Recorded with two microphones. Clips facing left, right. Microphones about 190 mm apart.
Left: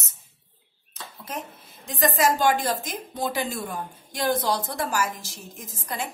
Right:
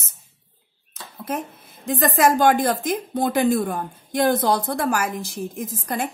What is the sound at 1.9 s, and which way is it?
A woman's voice, 55° right (ahead or behind).